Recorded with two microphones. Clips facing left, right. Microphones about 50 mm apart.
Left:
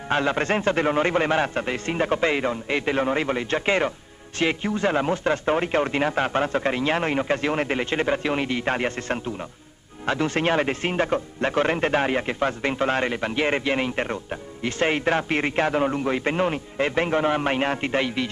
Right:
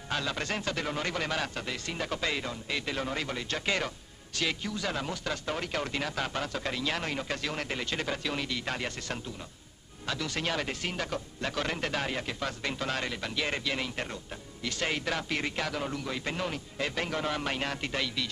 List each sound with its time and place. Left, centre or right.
0.1 s speech: left